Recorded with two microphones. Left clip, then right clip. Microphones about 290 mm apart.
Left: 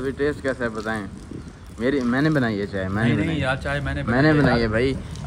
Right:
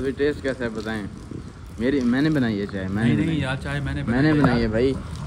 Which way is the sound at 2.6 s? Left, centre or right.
Left.